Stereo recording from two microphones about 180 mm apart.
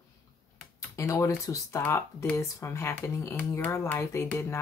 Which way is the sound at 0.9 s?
15° left (ahead or behind).